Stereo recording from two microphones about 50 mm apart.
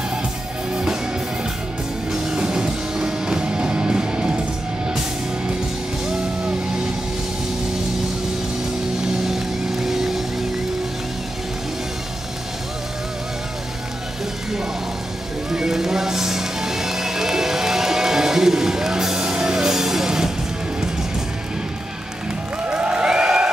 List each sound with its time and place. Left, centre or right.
2.2 s music: centre
6.0 s music: centre
9.2 s vehicle: centre
15.5 s music: centre
22.6 s a sound: right